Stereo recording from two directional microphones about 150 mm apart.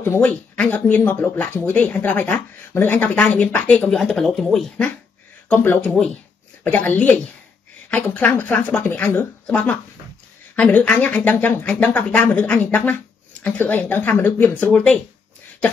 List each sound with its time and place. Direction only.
0.0 s speech: 10° left (ahead or behind)